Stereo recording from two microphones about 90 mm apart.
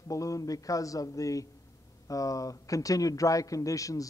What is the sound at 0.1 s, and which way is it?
A man's voice, 40° left (ahead or behind).